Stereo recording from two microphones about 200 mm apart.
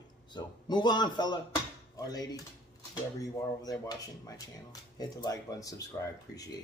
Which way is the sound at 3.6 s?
20° left (ahead or behind).